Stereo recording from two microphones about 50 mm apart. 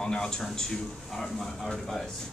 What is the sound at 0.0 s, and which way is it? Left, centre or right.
A man's voice, centre.